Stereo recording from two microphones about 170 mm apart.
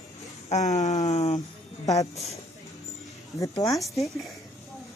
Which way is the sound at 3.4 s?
20° left (ahead or behind).